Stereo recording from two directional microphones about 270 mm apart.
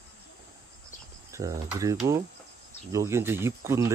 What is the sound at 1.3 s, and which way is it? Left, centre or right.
Speech, centre.